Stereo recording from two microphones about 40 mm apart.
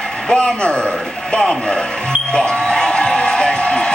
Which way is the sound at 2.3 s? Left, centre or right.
Centre.